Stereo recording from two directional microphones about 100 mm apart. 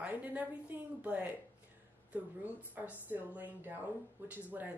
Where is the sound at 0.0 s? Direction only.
15° right (ahead or behind).